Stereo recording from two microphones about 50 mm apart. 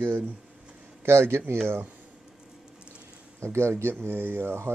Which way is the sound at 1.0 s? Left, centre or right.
Right.